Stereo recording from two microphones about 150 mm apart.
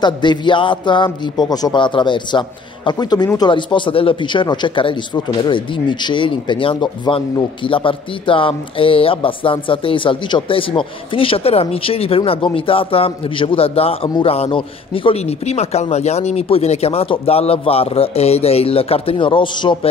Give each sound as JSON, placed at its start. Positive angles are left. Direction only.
{"t": 0.0, "sound": "speech", "side_deg": 30}